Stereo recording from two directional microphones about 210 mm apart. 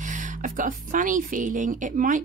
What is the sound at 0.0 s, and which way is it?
Speech, 35° right (ahead or behind).